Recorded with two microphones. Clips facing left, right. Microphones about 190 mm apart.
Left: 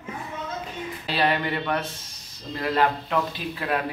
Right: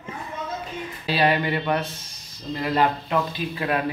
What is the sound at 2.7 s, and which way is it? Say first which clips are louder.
Speech: right 1 dB; 5° right (ahead or behind).